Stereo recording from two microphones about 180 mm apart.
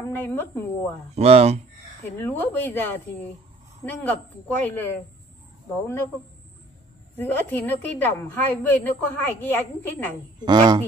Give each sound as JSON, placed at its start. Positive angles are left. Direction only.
{"t": 0.0, "sound": "a woman's voice", "side_deg": 10}
{"t": 1.1, "sound": "speech", "side_deg": -35}
{"t": 2.1, "sound": "a woman's voice", "side_deg": 10}
{"t": 7.2, "sound": "a woman's voice", "side_deg": 10}
{"t": 10.4, "sound": "speech", "side_deg": -25}